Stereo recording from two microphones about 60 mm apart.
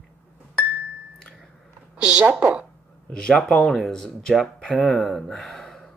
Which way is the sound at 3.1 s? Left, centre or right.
Centre.